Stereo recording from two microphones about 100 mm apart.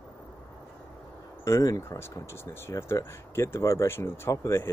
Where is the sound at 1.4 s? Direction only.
30° left (ahead or behind).